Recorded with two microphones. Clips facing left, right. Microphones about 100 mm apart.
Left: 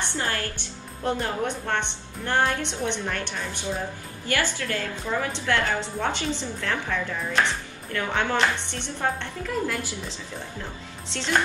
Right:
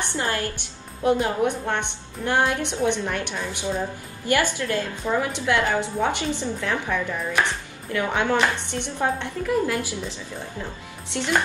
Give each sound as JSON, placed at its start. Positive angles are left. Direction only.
{"t": 0.1, "sound": "a woman's voice", "side_deg": -20}